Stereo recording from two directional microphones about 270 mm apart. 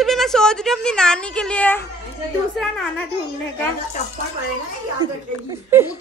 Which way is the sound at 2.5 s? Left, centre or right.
Centre.